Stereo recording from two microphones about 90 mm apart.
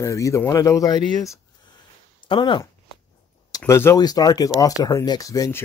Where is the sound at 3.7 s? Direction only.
30° left (ahead or behind).